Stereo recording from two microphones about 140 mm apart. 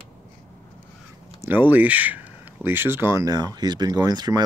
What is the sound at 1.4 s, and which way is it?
Speech, 15° right (ahead or behind).